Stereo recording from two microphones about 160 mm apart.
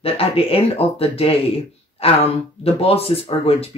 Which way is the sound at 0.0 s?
35° left (ahead or behind).